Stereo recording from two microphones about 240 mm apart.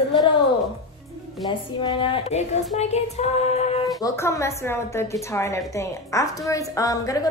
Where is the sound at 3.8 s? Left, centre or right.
Centre.